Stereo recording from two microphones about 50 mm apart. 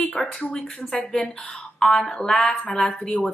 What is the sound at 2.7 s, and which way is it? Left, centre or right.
Speech, centre.